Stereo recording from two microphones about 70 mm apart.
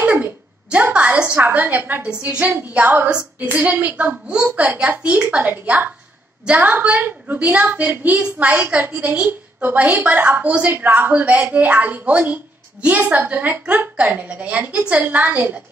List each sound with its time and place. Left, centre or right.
0.0 s a sound: right
1.3 s a woman's voice: right
3.1 s a woman's voice: centre
3.4 s a woman's voice: right
4.3 s a woman's voice: centre